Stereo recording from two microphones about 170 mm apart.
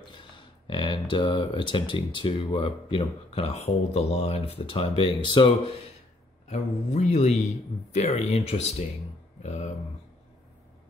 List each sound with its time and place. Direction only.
0.7 s speech: 30° left (ahead or behind)
6.5 s speech: 40° left (ahead or behind)